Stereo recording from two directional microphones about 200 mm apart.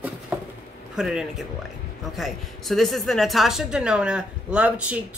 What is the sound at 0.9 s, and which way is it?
A woman's voice, centre (ahead or behind).